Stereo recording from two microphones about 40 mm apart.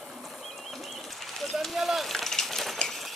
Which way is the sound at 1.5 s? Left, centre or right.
Centre.